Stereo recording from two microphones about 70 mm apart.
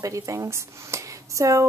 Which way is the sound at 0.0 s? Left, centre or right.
Right.